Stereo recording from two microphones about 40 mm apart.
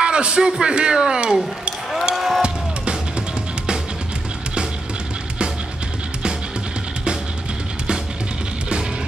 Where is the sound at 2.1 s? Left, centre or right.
Centre.